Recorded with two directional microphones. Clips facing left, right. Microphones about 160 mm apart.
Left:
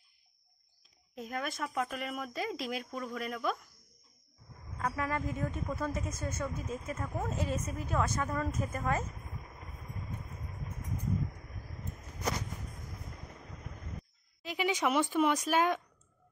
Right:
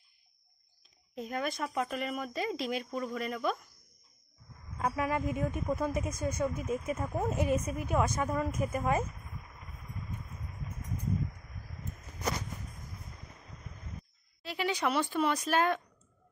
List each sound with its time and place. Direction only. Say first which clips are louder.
1.1 s speech: right 3 dB; centre (ahead or behind)
4.7 s a woman's voice: right 3 dB; 20° right (ahead or behind)
14.4 s speech: left 1 dB; 15° left (ahead or behind)